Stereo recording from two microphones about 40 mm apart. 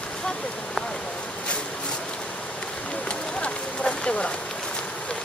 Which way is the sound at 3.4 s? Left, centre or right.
Left.